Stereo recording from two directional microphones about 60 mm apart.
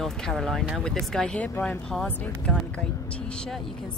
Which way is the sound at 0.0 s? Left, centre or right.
Centre.